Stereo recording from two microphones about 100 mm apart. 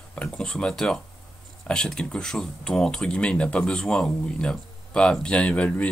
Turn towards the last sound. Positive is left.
turn(degrees=15)  # may be behind; listen again after turning